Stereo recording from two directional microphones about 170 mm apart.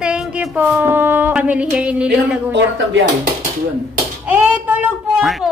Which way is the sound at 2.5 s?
90° right.